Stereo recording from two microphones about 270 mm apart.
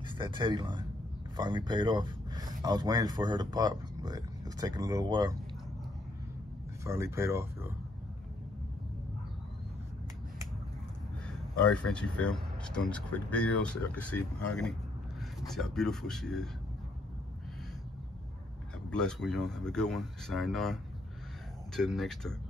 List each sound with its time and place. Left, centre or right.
0.1 s speech: centre
6.8 s speech: centre
11.2 s speech: centre
18.9 s speech: centre